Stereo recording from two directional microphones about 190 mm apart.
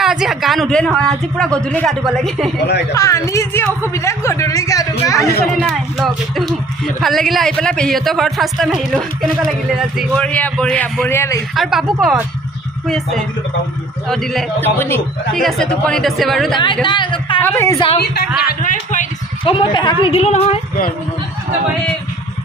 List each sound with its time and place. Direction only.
0.0 s speech: centre (ahead or behind)
2.9 s a man's voice: 15° left (ahead or behind)
5.6 s a man's voice: centre (ahead or behind)
11.5 s speech: centre (ahead or behind)
16.8 s a woman's voice: 25° left (ahead or behind)
17.4 s a man's voice: 10° left (ahead or behind)
18.5 s a man's voice: 45° left (ahead or behind)
19.4 s a woman's voice: 30° left (ahead or behind)